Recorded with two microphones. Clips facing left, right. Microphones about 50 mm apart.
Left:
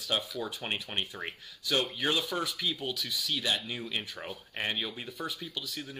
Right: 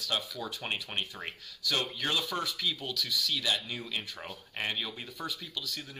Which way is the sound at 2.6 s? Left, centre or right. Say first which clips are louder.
Even; centre.